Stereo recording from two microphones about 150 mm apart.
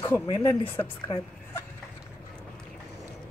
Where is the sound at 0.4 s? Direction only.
15° left (ahead or behind).